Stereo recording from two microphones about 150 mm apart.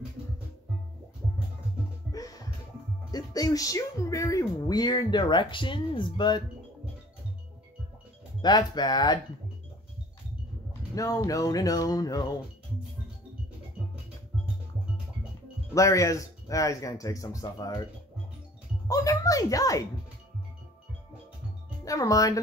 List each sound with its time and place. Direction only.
2.1 s music: 25° left (ahead or behind)
3.1 s speech: 25° left (ahead or behind)
8.4 s speech: 30° left (ahead or behind)
11.0 s speech: 20° left (ahead or behind)
15.7 s speech: 20° left (ahead or behind)
18.9 s speech: 20° left (ahead or behind)
21.8 s speech: 25° left (ahead or behind)